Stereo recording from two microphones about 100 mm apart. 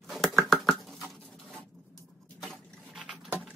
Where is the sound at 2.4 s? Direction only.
Centre (ahead or behind).